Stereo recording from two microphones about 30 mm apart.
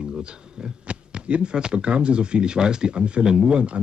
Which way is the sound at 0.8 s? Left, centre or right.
Right.